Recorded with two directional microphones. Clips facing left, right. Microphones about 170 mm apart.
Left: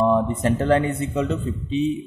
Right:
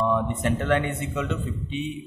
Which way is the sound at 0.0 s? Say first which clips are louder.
Left 5 dB; 35° left (ahead or behind).